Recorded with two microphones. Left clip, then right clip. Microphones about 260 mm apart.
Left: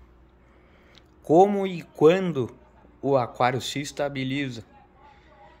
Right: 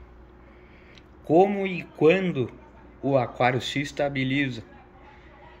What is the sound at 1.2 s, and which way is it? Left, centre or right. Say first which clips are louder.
Speech: left 2 dB; centre.